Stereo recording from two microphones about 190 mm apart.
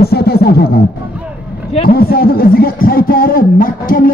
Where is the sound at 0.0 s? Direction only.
55° left (ahead or behind).